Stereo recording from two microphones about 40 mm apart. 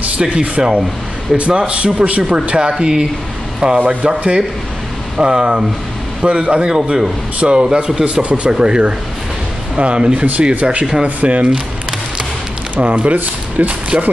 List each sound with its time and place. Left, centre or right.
0.2 s speech: right
3.6 s speech: right
5.1 s speech: centre
12.7 s speech: right